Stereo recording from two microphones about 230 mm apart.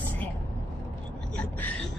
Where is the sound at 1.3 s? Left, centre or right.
Centre.